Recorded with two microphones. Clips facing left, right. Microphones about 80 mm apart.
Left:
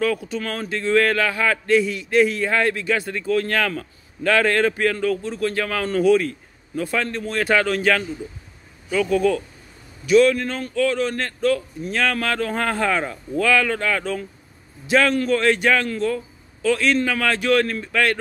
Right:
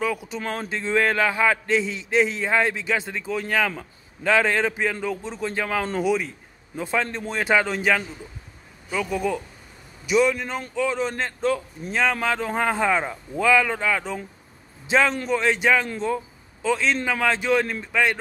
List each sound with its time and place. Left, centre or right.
0.0 s a man's voice: centre